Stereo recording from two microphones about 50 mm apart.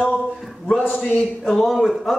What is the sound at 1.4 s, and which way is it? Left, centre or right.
Speech, centre.